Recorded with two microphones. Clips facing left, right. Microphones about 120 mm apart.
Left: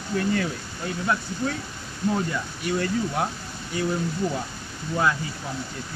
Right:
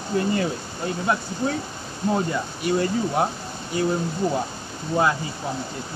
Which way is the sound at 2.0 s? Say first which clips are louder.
Right 2 dB; 30° right (ahead or behind).